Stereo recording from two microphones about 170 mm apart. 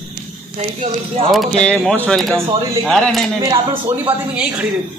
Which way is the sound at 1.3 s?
Centre (ahead or behind).